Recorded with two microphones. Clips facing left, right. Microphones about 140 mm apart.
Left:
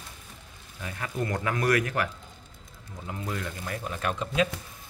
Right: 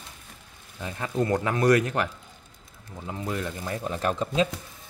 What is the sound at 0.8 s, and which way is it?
Speech, 30° right (ahead or behind).